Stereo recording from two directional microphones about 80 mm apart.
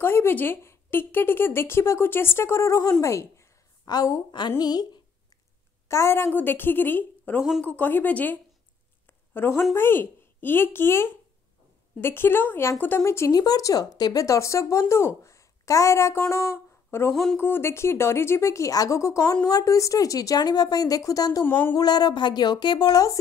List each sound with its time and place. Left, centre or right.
0.0 s speech: left
2.8 s a woman's voice: left
3.1 s a woman's voice: left
3.8 s a woman's voice: left
4.3 s speech: left
5.9 s speech: left
9.0 s a sound: left
9.8 s speech: left
13.3 s speech: left
17.1 s speech: centre
17.4 s a woman's voice: left
21.5 s speech: left
21.7 s speech: left